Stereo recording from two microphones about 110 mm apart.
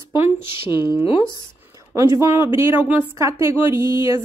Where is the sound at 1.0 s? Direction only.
55° left (ahead or behind).